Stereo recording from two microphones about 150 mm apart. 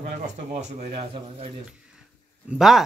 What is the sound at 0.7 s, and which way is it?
Speech, 50° right (ahead or behind).